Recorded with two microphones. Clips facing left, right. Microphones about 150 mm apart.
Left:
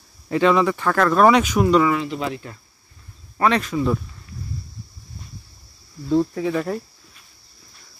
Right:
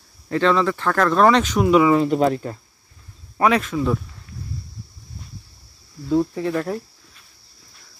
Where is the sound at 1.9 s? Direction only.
45° right (ahead or behind).